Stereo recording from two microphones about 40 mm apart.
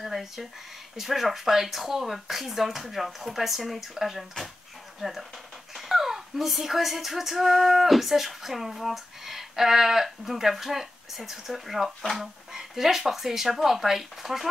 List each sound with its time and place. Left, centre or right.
0.0 s a sound: centre
0.9 s speech: centre
12.0 s speech: centre
12.5 s speech: centre